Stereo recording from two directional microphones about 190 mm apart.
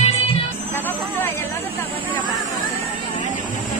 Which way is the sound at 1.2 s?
10° left (ahead or behind).